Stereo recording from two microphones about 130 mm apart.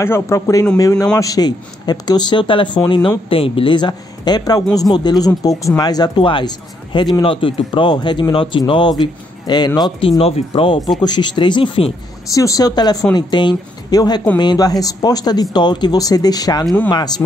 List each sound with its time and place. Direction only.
0.0 s speech: 20° left (ahead or behind); by 11.9 s 45° left (ahead or behind)
12.3 s speech: 25° left (ahead or behind)